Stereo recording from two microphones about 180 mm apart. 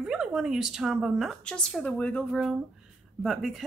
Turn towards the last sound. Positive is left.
turn(degrees=0)  # may be behind; listen again after turning